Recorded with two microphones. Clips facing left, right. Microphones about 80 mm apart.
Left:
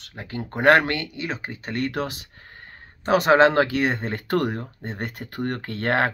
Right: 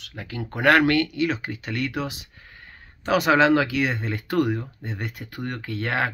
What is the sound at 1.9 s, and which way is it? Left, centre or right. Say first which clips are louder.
Speech: left 2 dB; left.